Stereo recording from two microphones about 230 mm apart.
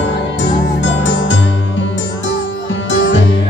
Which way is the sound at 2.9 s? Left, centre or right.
Left.